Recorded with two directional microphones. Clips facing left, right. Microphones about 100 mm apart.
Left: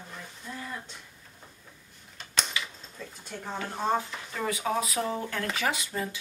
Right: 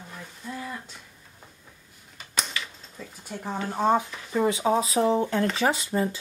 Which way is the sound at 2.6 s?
15° left (ahead or behind).